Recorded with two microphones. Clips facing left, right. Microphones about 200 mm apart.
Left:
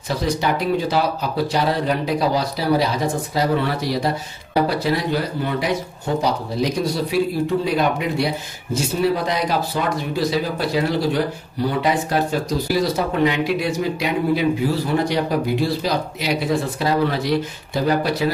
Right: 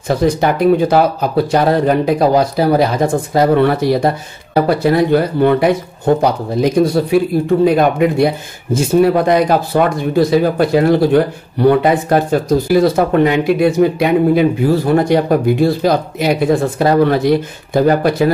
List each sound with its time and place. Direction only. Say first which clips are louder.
0.1 s speech: right 7 dB; 50° right (ahead or behind)